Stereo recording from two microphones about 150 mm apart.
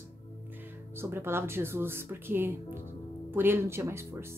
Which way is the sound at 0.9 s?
15° right (ahead or behind).